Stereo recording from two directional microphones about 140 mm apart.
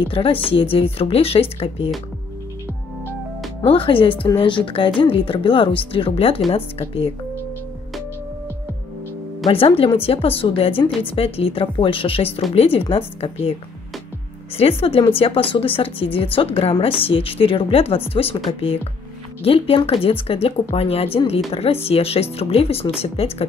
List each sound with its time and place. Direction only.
0.0 s a woman's voice: 40° left (ahead or behind)
3.6 s a woman's voice: 40° left (ahead or behind)
9.5 s a woman's voice: 40° left (ahead or behind)
14.6 s a woman's voice: 45° left (ahead or behind)